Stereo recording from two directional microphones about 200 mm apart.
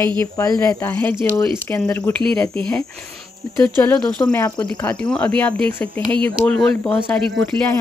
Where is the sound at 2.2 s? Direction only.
5° left (ahead or behind).